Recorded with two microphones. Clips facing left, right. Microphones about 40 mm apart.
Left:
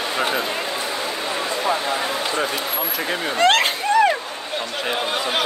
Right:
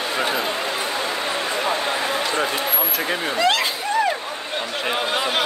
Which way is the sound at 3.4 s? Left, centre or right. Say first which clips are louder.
Left 4 dB; left.